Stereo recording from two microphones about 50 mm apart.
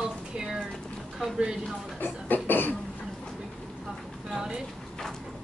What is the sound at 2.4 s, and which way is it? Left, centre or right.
Cough, left.